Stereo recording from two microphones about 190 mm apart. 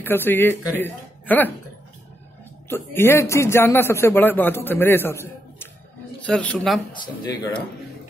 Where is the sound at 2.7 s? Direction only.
15° left (ahead or behind).